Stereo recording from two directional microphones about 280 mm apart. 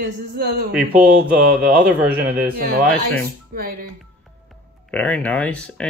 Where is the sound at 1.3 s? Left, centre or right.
Right.